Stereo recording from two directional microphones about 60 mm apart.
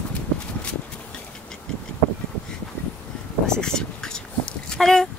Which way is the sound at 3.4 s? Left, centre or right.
Centre.